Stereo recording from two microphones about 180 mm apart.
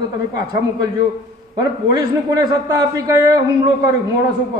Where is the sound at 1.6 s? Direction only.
20° right (ahead or behind).